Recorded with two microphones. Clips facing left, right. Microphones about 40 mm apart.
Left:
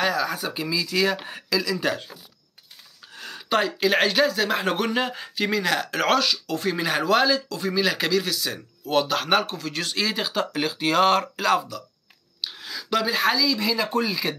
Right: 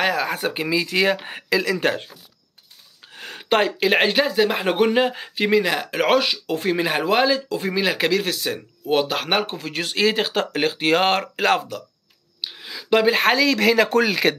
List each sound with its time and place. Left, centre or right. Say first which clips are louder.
0.0 s speech: right 3 dB; right
3.1 s speech: right 4 dB; right
12.4 s a sound: even; centre
13.0 s speech: right 4 dB; right